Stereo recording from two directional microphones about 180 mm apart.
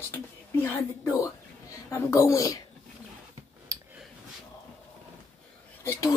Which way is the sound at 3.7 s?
15° right (ahead or behind).